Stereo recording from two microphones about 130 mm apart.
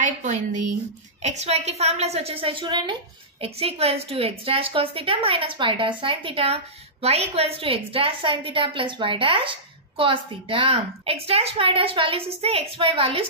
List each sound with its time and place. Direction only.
0.0 s a woman's voice: 70° right (ahead or behind)
1.2 s a woman's voice: 60° right (ahead or behind); by 3.4 s 35° right (ahead or behind)
3.4 s a woman's voice: 50° right (ahead or behind)